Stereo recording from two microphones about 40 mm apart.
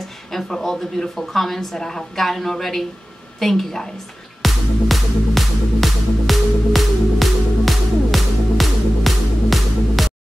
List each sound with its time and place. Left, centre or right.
0.3 s a woman's voice: centre
4.4 s music: centre